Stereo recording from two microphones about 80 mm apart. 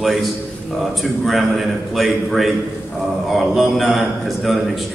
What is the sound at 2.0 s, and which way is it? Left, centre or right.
Speech, centre.